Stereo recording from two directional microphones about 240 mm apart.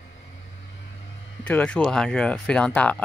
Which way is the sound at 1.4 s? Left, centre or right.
Centre.